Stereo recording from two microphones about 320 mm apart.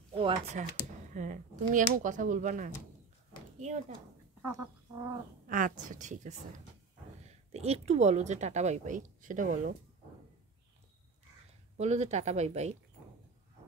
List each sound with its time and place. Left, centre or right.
0.1 s speech: centre
4.4 s a sound: right
5.5 s speech: right
11.7 s speech: right